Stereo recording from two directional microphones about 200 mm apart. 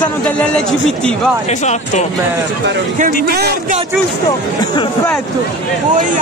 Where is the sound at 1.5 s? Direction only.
35° left (ahead or behind).